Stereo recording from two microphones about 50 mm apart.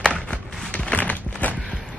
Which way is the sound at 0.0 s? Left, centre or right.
Left.